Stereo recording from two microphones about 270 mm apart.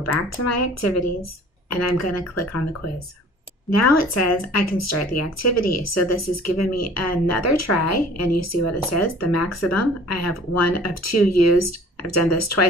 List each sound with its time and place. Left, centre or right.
0.0 s speech: left
3.7 s speech: left